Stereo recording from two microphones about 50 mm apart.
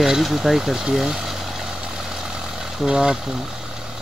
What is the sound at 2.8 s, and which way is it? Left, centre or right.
Speech, centre.